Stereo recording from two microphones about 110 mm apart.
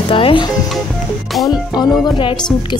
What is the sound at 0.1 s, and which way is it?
Speech, 50° left (ahead or behind).